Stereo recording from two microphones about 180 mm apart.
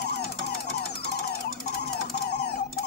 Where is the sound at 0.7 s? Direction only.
60° left (ahead or behind).